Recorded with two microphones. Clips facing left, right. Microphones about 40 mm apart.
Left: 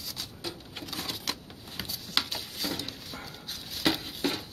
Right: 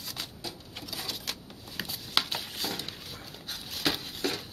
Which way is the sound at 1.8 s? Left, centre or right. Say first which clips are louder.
Right 1 dB; centre.